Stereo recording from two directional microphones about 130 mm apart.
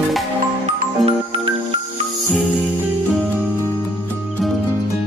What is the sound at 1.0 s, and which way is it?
Music, 45° right (ahead or behind).